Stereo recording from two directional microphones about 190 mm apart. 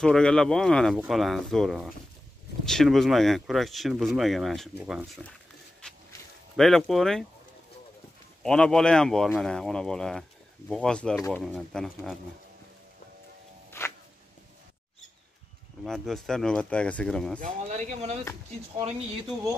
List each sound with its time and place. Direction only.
0.0 s speech: 5° left (ahead or behind)
6.5 s speech: centre (ahead or behind)
8.4 s speech: 5° left (ahead or behind)
13.7 s music: 10° left (ahead or behind)
15.8 s speech: centre (ahead or behind)
17.4 s speech: 40° right (ahead or behind)